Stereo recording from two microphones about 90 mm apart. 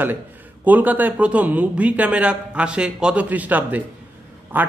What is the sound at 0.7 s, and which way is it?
A man's voice, 20° right (ahead or behind).